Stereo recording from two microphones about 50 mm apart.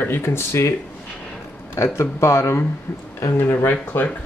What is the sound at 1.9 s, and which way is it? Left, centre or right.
Speech, left.